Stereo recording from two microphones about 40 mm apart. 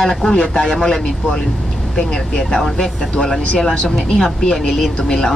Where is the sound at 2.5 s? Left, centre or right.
Centre.